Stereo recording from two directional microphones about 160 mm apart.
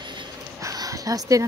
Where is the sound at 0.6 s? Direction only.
20° right (ahead or behind).